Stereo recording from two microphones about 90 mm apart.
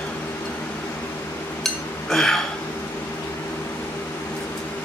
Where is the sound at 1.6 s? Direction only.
5° left (ahead or behind).